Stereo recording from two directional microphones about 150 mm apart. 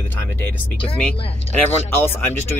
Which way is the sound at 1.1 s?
35° left (ahead or behind).